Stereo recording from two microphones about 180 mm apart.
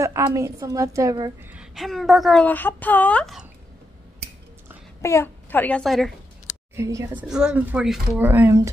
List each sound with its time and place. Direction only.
0.0 s a woman's voice: 15° right (ahead or behind)
1.5 s a woman's voice: 5° right (ahead or behind)
5.0 s a woman's voice: 15° left (ahead or behind)
6.7 s a woman's voice: 15° right (ahead or behind)
7.2 s a woman's voice: 5° right (ahead or behind)